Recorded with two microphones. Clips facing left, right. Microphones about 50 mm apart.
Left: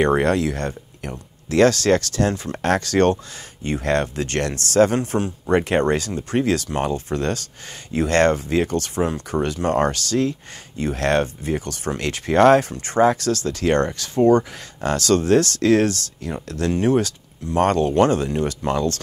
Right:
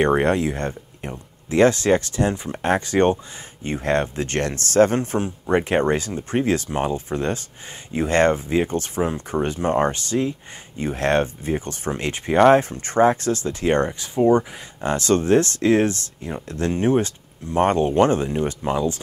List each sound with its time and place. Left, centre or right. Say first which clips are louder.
0.2 s speech: even; right
12.6 s speech: even; right